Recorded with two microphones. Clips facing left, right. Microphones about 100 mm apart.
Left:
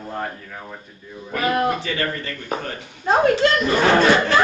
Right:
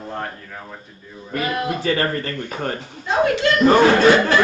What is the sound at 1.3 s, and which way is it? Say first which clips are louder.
Speech: left 3 dB; 40° left (ahead or behind).